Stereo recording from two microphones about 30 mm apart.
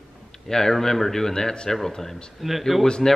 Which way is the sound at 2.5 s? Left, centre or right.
Centre.